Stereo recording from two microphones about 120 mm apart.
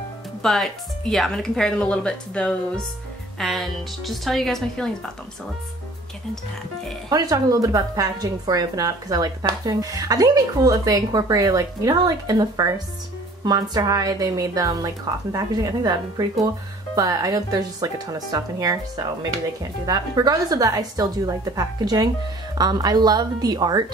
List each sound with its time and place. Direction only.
0.4 s speech: 5° left (ahead or behind)
7.1 s a woman's voice: 30° right (ahead or behind)